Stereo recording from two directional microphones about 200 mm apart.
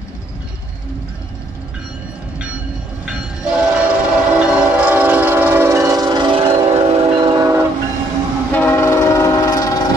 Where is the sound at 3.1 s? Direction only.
5° right (ahead or behind).